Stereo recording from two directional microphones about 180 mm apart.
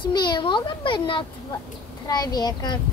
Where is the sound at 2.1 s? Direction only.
20° left (ahead or behind).